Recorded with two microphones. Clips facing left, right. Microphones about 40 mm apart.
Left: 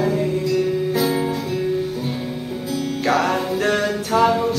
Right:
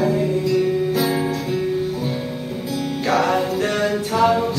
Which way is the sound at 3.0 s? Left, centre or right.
Centre.